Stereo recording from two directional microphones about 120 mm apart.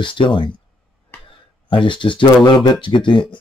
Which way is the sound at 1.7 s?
40° left (ahead or behind).